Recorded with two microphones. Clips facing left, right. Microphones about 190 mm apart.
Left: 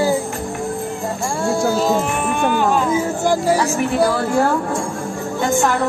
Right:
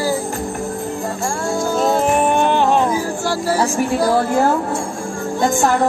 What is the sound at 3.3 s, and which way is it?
Speech, 15° left (ahead or behind).